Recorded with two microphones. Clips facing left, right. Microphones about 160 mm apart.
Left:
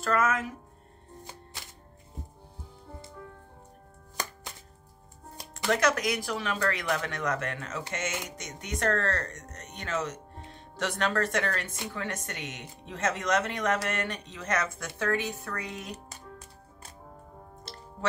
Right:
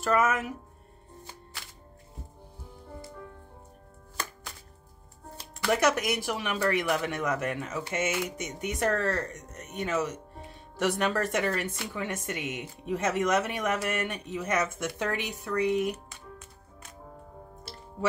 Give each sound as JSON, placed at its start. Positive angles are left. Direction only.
{"t": 0.0, "sound": "speech", "side_deg": -15}
{"t": 5.7, "sound": "speech", "side_deg": -15}
{"t": 15.9, "sound": "music", "side_deg": 35}